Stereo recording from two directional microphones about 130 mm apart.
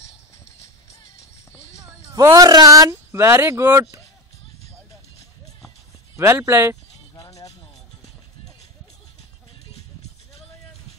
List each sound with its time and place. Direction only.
2.2 s speech: 30° right (ahead or behind)
6.1 s speech: 20° right (ahead or behind)
7.2 s music: 25° left (ahead or behind)